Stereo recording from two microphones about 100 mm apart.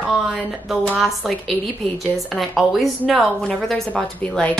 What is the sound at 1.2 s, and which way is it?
A woman's voice, centre (ahead or behind).